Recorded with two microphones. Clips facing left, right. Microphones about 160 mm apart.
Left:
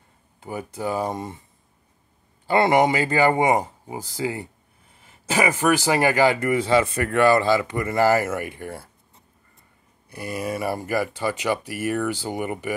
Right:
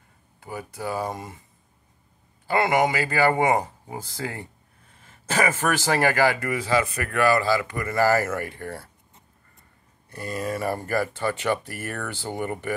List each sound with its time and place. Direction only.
0.4 s speech: 25° left (ahead or behind)
2.4 s speech: 30° left (ahead or behind)
10.0 s speech: 10° left (ahead or behind)